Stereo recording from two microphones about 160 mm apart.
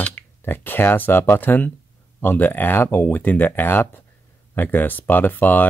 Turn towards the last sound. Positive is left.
turn(degrees=10)  # may be behind; listen again after turning